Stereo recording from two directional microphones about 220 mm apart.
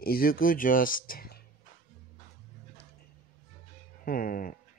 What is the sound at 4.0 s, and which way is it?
Speech, 40° left (ahead or behind).